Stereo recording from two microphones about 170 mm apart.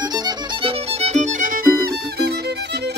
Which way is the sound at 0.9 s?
40° right (ahead or behind).